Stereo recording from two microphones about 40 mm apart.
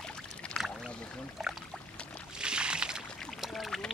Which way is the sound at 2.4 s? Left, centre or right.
Right.